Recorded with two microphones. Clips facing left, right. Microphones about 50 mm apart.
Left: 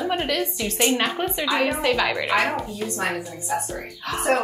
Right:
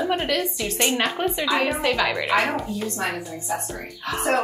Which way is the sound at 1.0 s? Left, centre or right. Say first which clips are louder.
Right 1 dB; centre.